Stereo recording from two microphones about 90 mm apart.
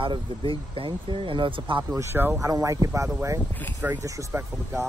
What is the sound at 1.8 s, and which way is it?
Speech, 30° right (ahead or behind).